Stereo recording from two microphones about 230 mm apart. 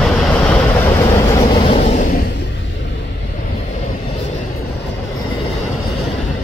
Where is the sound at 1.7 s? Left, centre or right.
Left.